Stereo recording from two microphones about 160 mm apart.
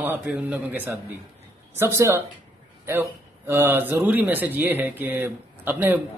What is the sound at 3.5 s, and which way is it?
Speech, 15° right (ahead or behind).